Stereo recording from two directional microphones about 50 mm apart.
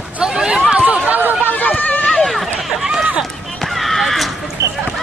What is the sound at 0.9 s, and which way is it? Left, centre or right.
Chatter, right.